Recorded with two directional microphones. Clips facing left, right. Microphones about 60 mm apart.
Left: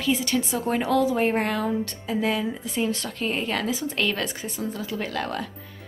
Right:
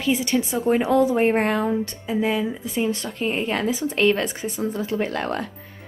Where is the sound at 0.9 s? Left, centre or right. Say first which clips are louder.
Right 2 dB; right.